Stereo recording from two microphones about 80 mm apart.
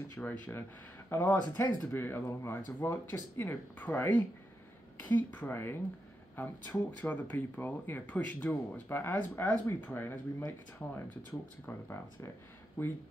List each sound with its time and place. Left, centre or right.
0.2 s speech: left